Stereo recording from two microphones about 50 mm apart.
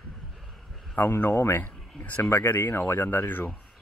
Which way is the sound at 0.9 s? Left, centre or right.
Left.